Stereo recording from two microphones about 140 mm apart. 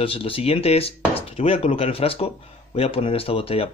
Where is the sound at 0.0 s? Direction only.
40° left (ahead or behind).